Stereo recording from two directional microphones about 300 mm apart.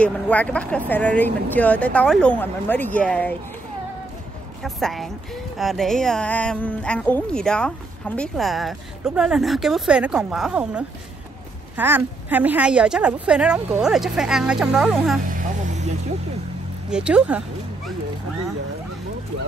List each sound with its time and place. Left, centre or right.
0.0 s speech: centre
4.6 s speech: centre
15.2 s vehicle: right
16.9 s speech: centre